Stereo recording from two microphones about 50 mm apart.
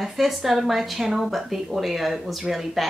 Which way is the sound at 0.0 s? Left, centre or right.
Centre.